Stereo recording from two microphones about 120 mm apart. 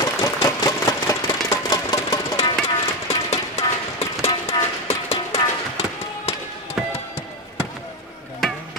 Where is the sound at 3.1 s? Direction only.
60° left (ahead or behind).